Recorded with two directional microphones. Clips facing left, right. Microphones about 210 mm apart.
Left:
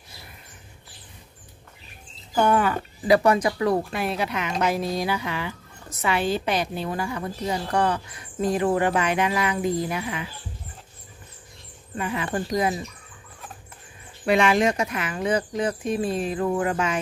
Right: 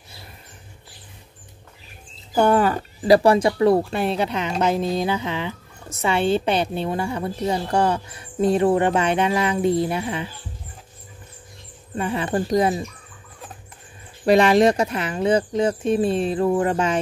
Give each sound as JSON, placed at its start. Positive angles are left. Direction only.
{"t": 2.3, "sound": "speech", "side_deg": -35}
{"t": 12.0, "sound": "speech", "side_deg": -30}
{"t": 14.2, "sound": "speech", "side_deg": -35}